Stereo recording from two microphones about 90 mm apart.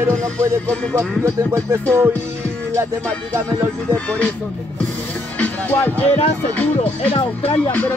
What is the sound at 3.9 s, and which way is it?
Speech, 15° left (ahead or behind).